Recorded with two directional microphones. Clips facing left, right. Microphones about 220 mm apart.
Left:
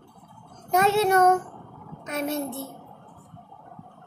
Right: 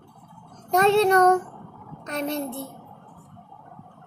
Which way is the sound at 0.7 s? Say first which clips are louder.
Right 3 dB; 5° left (ahead or behind).